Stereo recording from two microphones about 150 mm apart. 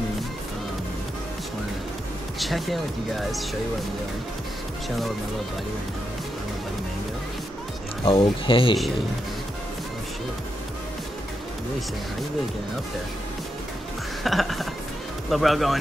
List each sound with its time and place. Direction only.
2.3 s speech: centre (ahead or behind)
8.0 s speech: 40° left (ahead or behind)
14.2 s music: centre (ahead or behind)
15.2 s speech: centre (ahead or behind)